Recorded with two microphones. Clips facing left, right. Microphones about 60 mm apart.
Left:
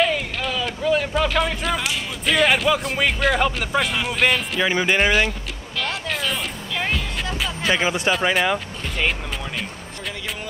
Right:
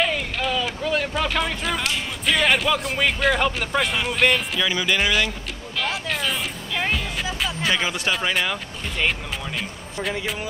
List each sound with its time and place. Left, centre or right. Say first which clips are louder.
0.0 s speech: left 2 dB; centre
4.6 s speech: left 3 dB; left
5.8 s music: even; centre
7.7 s speech: left 7 dB; centre
8.1 s speech: left 4 dB; centre